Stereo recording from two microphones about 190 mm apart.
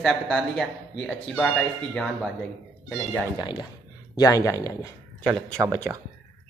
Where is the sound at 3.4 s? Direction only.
25° left (ahead or behind).